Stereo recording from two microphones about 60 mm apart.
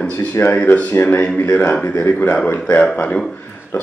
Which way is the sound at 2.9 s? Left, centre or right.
Left.